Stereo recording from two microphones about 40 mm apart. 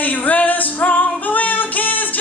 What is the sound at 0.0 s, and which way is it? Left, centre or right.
Music, left.